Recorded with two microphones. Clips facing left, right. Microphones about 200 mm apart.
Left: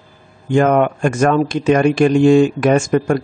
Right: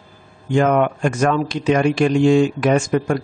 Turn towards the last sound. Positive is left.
turn(degrees=50)  # may be behind; listen again after turning